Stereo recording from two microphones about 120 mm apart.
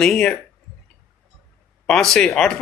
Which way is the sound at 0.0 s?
5° left (ahead or behind).